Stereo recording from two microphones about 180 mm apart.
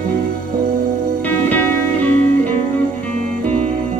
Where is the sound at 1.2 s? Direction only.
10° left (ahead or behind).